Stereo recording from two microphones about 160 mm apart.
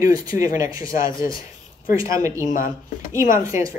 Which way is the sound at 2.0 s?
20° right (ahead or behind).